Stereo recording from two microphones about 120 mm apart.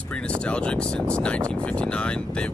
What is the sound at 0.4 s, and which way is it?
Speech, 10° left (ahead or behind).